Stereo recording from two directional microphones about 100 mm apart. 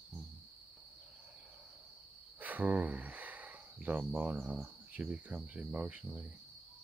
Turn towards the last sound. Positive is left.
turn(degrees=-10)  # may be behind; listen again after turning